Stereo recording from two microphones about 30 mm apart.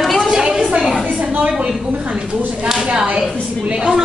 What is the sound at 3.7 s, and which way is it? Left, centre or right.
Speech, right.